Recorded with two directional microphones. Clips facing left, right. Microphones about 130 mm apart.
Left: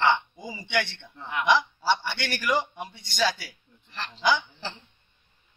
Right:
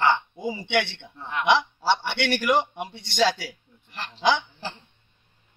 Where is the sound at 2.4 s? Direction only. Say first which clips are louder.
Right 1 dB; 25° right (ahead or behind).